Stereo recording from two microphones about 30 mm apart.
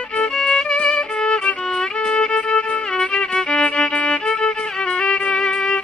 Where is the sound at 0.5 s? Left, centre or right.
Left.